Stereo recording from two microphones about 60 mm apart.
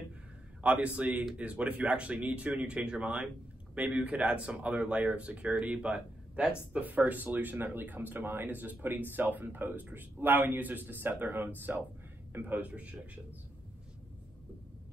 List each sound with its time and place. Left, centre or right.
0.6 s speech: right